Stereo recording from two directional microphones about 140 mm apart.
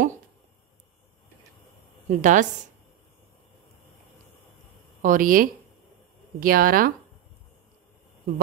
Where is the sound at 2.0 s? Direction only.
65° right (ahead or behind).